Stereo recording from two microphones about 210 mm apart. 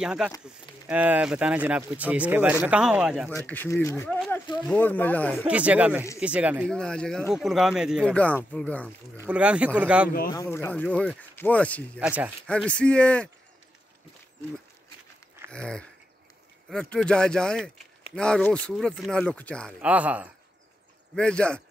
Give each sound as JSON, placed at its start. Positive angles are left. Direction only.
{"t": 0.0, "sound": "speech", "side_deg": -5}
{"t": 3.3, "sound": "speech", "side_deg": 10}
{"t": 5.4, "sound": "speech", "side_deg": -5}
{"t": 6.7, "sound": "speech", "side_deg": 5}
{"t": 9.1, "sound": "speech", "side_deg": -10}
{"t": 10.3, "sound": "speech", "side_deg": 15}
{"t": 15.5, "sound": "speech", "side_deg": 5}
{"t": 19.8, "sound": "speech", "side_deg": -5}
{"t": 21.1, "sound": "speech", "side_deg": 5}